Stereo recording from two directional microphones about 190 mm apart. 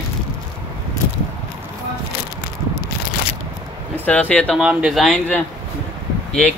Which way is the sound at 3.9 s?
10° left (ahead or behind).